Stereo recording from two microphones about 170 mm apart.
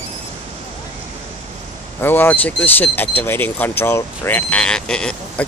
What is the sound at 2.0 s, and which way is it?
Speech, 10° left (ahead or behind).